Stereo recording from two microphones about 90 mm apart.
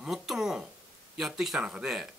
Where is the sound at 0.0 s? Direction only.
5° right (ahead or behind).